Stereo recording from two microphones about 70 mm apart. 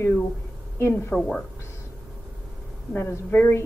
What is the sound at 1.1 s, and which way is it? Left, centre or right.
Speech, centre.